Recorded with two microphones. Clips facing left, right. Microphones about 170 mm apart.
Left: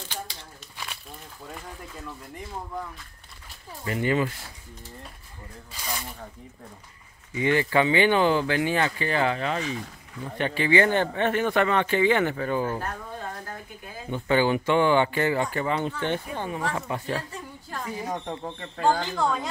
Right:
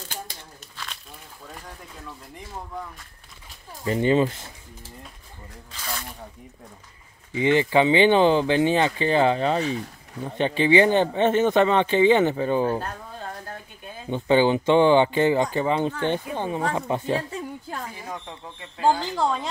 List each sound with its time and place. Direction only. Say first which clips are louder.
2.0 s speech: left 1 dB; centre (ahead or behind)
3.8 s speech: right 5 dB; 25° right (ahead or behind)
5.7 s speech: even; 10° left (ahead or behind)
7.3 s speech: right 3 dB; 20° right (ahead or behind)
14.1 s speech: right 4 dB; 20° right (ahead or behind)
18.0 s speech: left 5 dB; 45° left (ahead or behind)
19.1 s speech: right 1 dB; 25° right (ahead or behind)